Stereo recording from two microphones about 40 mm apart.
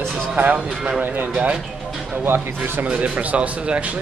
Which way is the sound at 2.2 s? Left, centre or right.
Right.